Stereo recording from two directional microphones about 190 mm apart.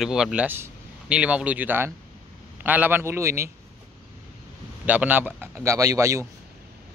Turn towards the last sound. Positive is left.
turn(degrees=-15)  # may be behind; listen again after turning